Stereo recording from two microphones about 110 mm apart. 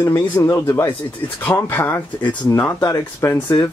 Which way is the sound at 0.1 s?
25° left (ahead or behind).